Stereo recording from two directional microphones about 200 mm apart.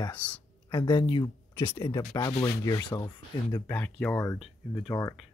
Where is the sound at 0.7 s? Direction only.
20° left (ahead or behind).